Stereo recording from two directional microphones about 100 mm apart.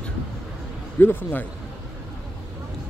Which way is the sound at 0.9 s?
20° left (ahead or behind).